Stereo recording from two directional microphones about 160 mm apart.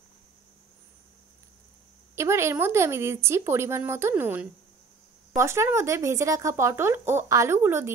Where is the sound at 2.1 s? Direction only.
15° right (ahead or behind).